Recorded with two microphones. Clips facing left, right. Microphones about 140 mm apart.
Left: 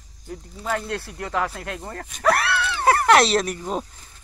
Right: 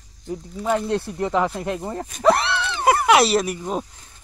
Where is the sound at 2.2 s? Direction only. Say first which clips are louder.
Right 3 dB; 20° right (ahead or behind); by 3.8 s 5° right (ahead or behind).